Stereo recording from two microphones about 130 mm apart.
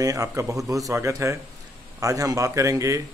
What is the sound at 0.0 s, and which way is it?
Speech, 25° right (ahead or behind).